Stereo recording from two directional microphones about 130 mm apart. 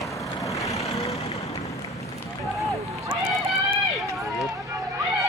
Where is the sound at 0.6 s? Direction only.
25° left (ahead or behind).